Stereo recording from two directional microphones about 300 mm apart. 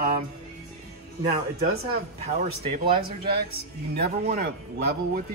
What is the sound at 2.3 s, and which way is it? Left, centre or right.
Speech, right.